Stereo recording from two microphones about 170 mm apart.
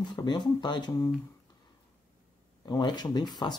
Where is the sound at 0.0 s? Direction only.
25° left (ahead or behind).